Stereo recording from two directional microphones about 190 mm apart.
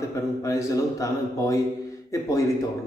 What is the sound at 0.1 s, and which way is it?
A man's voice, 15° left (ahead or behind).